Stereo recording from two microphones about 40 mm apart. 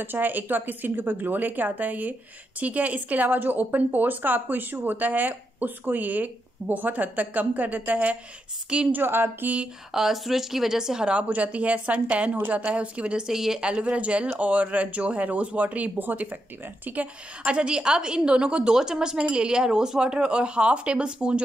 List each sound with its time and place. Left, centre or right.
0.0 s speech: right
8.9 s a woman's voice: right
9.9 s a woman's voice: centre
11.2 s speech: right
13.3 s a woman's voice: centre
13.6 s speech: right
17.5 s speech: right